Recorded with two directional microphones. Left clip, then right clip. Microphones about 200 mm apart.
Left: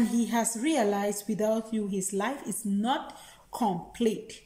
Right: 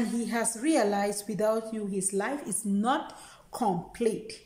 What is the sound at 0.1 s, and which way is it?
Speech, 5° right (ahead or behind).